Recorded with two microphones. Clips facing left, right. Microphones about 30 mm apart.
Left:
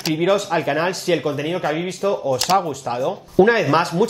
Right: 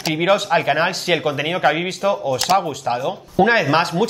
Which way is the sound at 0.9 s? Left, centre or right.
Right.